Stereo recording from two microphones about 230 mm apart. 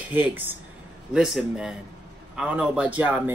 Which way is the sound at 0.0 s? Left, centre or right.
Centre.